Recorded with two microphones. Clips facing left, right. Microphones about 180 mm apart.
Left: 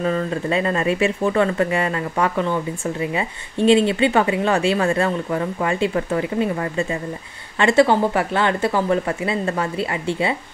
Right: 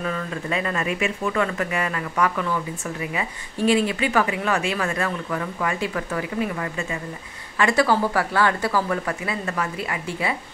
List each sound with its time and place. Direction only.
0.0 s speech: 35° left (ahead or behind)